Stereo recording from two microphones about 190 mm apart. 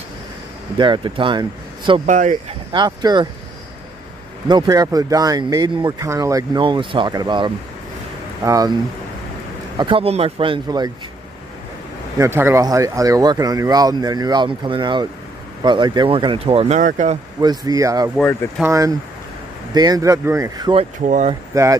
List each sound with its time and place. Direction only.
0.7 s speech: 25° right (ahead or behind)
2.0 s speech: 40° right (ahead or behind)
2.7 s speech: 20° right (ahead or behind)
4.5 s speech: 20° right (ahead or behind)
9.8 s speech: 30° right (ahead or behind)
12.2 s speech: 10° right (ahead or behind); by 17.2 s 40° right (ahead or behind)
17.4 s speech: 20° right (ahead or behind)